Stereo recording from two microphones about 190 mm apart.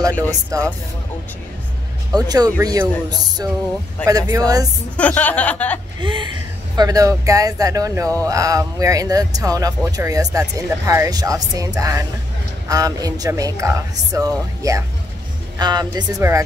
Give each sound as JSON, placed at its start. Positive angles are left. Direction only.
{"t": 0.3, "sound": "speech", "side_deg": -15}
{"t": 2.1, "sound": "speech", "side_deg": -20}
{"t": 4.9, "sound": "speech", "side_deg": 5}
{"t": 5.9, "sound": "speech", "side_deg": -25}